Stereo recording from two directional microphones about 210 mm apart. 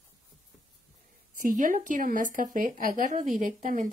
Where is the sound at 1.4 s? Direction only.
40° right (ahead or behind).